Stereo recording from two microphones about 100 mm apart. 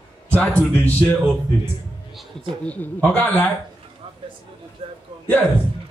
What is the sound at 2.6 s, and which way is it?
Speech, 15° left (ahead or behind).